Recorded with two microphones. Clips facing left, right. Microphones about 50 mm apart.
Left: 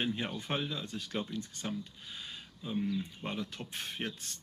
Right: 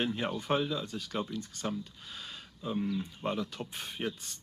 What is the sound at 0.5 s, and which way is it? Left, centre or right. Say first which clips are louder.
Speech: right 7 dB; centre.